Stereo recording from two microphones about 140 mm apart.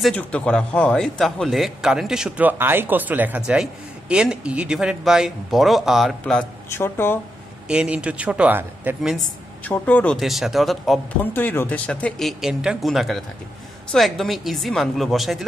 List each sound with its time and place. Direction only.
0.1 s a man's voice: 10° left (ahead or behind)
6.7 s speech: 15° left (ahead or behind)
7.6 s speech: 5° right (ahead or behind)
9.0 s a man's voice: centre (ahead or behind)
10.1 s a man's voice: centre (ahead or behind)
11.3 s a man's voice: 15° left (ahead or behind)